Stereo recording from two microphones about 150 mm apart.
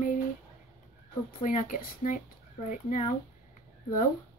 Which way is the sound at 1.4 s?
65° left (ahead or behind).